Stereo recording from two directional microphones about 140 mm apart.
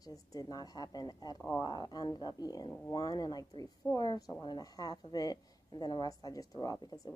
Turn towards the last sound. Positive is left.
turn(degrees=30)  # may be behind; listen again after turning